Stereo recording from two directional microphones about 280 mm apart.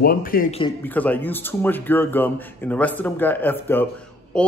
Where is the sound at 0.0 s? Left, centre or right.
Left.